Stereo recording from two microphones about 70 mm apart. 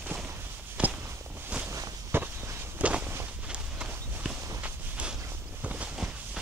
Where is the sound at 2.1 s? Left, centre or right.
Right.